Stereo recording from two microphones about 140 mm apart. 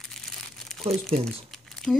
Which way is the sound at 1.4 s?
Centre (ahead or behind).